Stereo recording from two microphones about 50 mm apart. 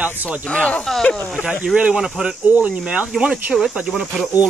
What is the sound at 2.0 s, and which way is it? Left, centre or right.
Speech, centre.